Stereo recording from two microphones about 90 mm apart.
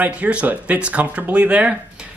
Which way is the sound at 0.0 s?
15° right (ahead or behind).